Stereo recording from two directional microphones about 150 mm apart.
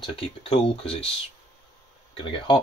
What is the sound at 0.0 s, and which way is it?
Speech, 35° left (ahead or behind).